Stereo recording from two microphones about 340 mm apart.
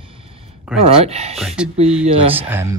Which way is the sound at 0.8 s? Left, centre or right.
Centre.